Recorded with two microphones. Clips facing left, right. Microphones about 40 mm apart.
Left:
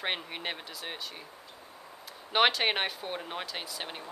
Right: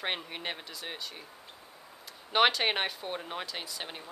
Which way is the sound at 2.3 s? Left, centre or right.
Centre.